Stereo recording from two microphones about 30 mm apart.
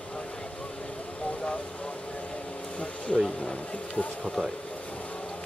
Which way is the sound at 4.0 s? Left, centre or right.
Left.